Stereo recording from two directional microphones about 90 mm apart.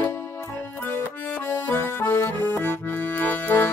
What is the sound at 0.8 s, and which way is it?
Accordion, 20° left (ahead or behind).